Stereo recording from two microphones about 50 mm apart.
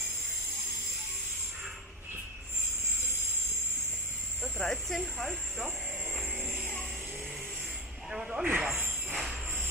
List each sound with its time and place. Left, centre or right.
4.4 s a sound: centre
4.9 s speech: centre
8.1 s speech: centre
8.5 s speech: right
9.1 s jingle bell: centre